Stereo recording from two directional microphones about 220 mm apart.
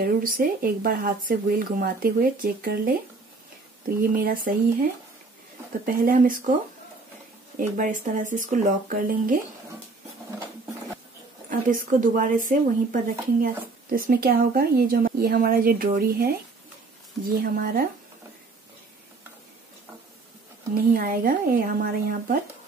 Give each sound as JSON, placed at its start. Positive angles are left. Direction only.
{"t": 0.0, "sound": "speech", "side_deg": -40}
{"t": 4.1, "sound": "speech", "side_deg": -40}
{"t": 5.9, "sound": "speech", "side_deg": -40}
{"t": 7.5, "sound": "speech", "side_deg": -35}
{"t": 11.7, "sound": "speech", "side_deg": -35}
{"t": 17.4, "sound": "speech", "side_deg": -40}
{"t": 20.7, "sound": "speech", "side_deg": -40}